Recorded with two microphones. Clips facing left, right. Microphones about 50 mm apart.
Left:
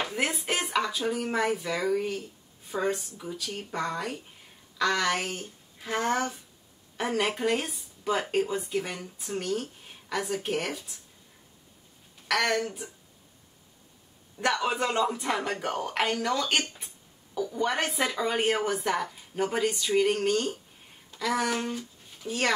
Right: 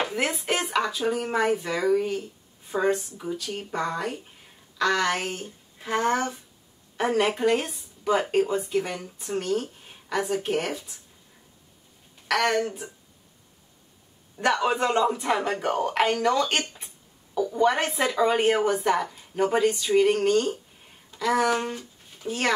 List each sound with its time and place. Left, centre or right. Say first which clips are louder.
0.1 s speech: right 3 dB; centre
2.9 s speech: right 6 dB; right
3.7 s speech: right 3 dB; centre
5.8 s speech: right 4 dB; right
7.0 s speech: right 5 dB; centre
12.3 s speech: right 3 dB; centre
14.4 s speech: right 4 dB; centre